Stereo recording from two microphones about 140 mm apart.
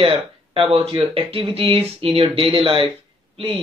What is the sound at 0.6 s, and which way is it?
Speech, 45° right (ahead or behind).